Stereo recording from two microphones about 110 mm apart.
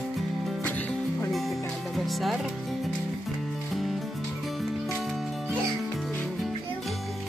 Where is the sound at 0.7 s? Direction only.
15° left (ahead or behind).